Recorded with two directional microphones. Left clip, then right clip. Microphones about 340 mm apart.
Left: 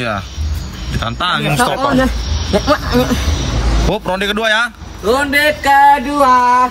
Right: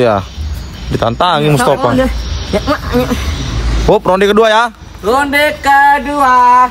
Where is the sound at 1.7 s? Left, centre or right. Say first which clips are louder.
Right 2 dB; centre.